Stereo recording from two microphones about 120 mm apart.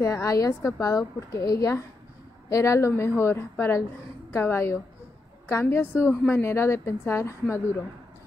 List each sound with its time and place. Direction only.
0.0 s a woman's voice: 25° left (ahead or behind)